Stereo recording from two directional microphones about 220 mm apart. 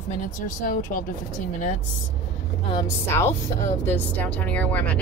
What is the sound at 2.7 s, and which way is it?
Speech, 15° left (ahead or behind).